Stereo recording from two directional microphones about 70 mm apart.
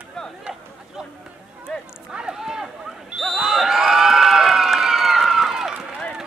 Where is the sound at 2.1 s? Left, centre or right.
Centre.